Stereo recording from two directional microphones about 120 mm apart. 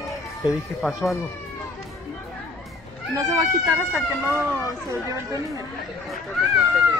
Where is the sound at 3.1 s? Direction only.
30° right (ahead or behind).